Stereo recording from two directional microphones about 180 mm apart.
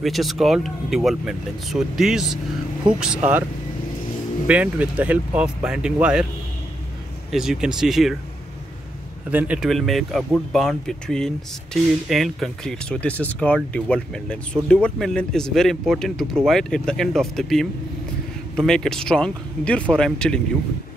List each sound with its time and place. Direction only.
0.0 s speech: centre (ahead or behind)
4.5 s speech: 10° right (ahead or behind)
7.2 s speech: 5° right (ahead or behind)
9.3 s speech: 10° right (ahead or behind)